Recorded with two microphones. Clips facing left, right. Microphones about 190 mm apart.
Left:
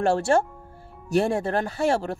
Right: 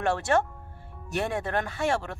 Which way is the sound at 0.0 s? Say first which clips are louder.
Left 4 dB; 30° left (ahead or behind).